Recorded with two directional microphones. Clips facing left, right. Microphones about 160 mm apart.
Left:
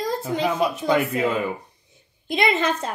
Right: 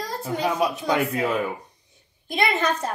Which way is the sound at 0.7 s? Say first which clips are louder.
Left 2 dB; centre (ahead or behind).